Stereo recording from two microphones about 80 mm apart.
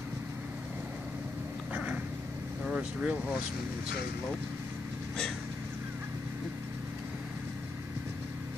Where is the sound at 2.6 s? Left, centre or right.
Centre.